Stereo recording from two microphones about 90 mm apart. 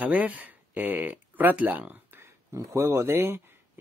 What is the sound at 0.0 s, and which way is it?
Speech, 15° right (ahead or behind).